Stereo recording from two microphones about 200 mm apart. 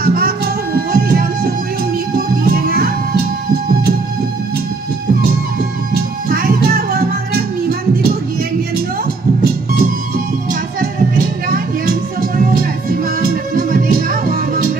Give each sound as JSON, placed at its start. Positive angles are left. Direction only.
{"t": 0.0, "sound": "music", "side_deg": -45}
{"t": 10.8, "sound": "music", "side_deg": -45}